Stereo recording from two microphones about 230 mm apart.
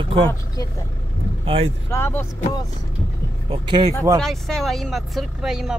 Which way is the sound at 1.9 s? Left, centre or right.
Centre.